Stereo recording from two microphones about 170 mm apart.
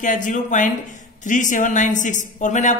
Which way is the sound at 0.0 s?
50° left (ahead or behind).